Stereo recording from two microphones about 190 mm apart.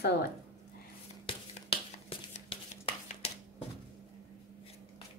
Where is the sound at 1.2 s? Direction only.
30° left (ahead or behind).